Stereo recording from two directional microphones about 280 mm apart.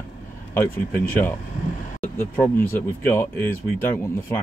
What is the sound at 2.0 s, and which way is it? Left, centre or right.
Speech, centre.